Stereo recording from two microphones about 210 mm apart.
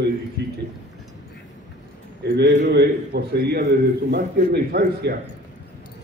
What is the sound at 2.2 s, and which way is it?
A man's voice, 50° right (ahead or behind).